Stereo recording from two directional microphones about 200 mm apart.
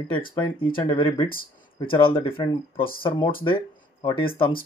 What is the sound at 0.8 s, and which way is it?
Speech, 25° left (ahead or behind).